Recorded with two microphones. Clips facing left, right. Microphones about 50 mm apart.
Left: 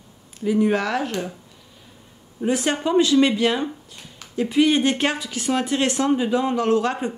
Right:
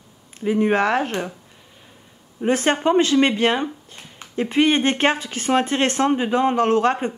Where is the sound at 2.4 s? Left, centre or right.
Right.